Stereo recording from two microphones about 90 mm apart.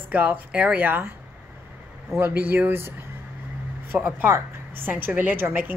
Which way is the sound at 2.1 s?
25° right (ahead or behind).